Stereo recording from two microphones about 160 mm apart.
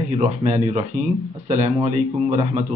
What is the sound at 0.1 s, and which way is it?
Speech, 40° right (ahead or behind).